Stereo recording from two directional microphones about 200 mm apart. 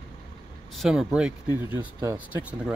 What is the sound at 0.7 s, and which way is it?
Speech, 5° right (ahead or behind).